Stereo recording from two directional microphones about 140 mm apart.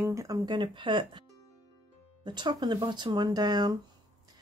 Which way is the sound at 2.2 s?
30° right (ahead or behind).